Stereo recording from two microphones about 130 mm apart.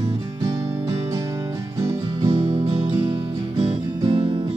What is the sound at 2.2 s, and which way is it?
Music, 45° right (ahead or behind).